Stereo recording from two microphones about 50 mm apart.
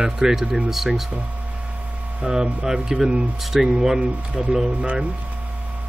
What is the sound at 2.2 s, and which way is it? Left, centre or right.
Speech, centre.